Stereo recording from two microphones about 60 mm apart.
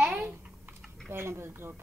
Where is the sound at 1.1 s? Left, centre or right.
Right.